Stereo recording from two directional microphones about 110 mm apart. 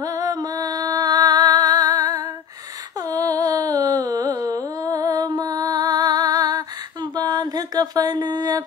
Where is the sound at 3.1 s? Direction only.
35° right (ahead or behind).